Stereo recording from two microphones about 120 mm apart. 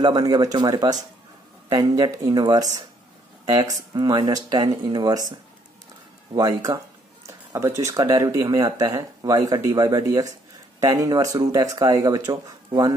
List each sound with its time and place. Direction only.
0.0 s speech: 35° right (ahead or behind)